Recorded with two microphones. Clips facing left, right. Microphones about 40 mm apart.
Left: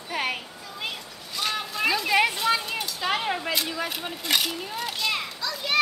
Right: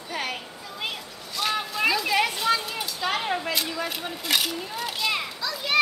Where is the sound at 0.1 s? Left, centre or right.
Centre.